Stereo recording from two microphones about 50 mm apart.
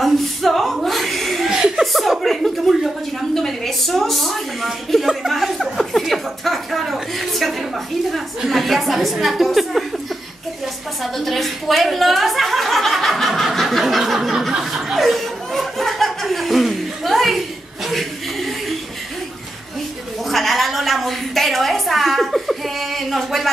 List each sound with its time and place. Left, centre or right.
0.0 s chuckle: centre
1.5 s chuckle: centre
1.9 s chuckle: centre
3.3 s a sound: centre
4.9 s chuckle: centre
11.0 s chuckle: centre
20.2 s a sound: centre